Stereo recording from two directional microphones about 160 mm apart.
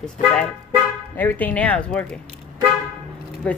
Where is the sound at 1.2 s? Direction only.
10° left (ahead or behind).